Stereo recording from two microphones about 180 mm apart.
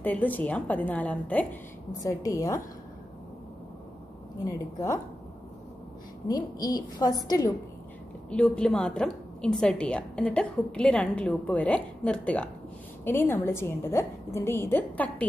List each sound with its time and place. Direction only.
0.0 s a woman's voice: 10° left (ahead or behind)
4.5 s a woman's voice: 20° left (ahead or behind)
6.2 s a woman's voice: 20° left (ahead or behind)
8.3 s a woman's voice: 5° left (ahead or behind)